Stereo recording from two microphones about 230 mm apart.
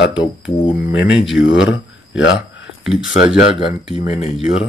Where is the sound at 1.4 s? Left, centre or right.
Left.